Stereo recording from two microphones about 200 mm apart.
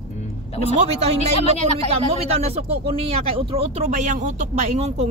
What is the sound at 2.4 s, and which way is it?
Speech, 30° right (ahead or behind).